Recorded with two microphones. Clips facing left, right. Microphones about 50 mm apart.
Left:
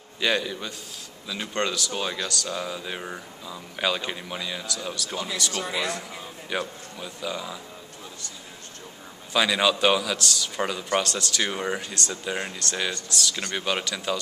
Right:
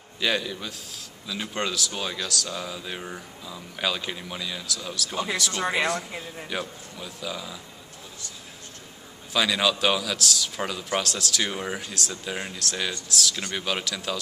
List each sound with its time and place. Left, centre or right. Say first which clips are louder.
0.2 s speech: left 1 dB; centre
5.6 s speech: right 5 dB; right
6.5 s speech: left 3 dB; centre
9.3 s speech: left 2 dB; centre